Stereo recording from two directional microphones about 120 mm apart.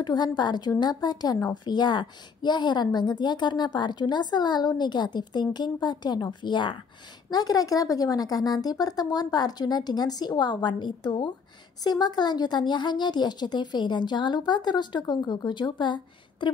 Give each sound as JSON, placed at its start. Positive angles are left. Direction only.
{"t": 0.0, "sound": "a woman's voice", "side_deg": 35}